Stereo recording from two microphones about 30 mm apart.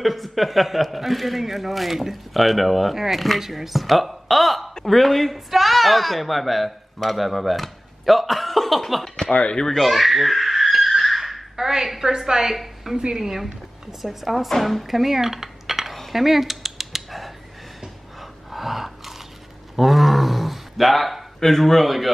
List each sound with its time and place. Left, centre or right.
0.0 s speech: centre
9.0 s a sound: centre
9.3 s speech: left
9.8 s a sound: centre
11.6 s a woman's voice: centre
14.0 s speech: centre
15.9 s cutlery: centre
18.5 s gasp: centre
19.7 s a sound: centre
21.4 s speech: centre